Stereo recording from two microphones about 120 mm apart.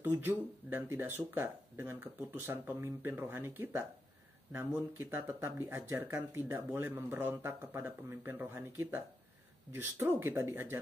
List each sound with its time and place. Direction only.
0.0 s speech: 15° right (ahead or behind)
5.1 s speech: 20° right (ahead or behind)